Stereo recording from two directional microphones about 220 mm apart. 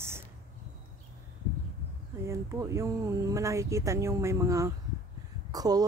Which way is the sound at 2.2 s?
15° right (ahead or behind).